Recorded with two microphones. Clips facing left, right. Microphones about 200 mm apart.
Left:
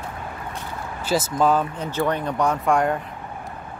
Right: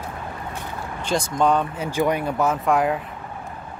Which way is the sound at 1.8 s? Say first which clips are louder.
Right 2 dB; 10° right (ahead or behind).